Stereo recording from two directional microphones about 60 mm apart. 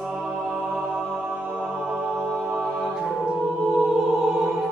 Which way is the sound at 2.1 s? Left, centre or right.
Centre.